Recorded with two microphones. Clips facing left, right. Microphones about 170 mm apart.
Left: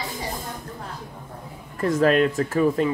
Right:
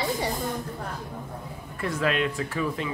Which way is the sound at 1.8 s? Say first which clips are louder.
Left 7 dB; 40° left (ahead or behind).